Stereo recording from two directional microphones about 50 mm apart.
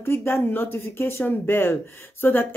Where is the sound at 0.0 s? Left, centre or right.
Left.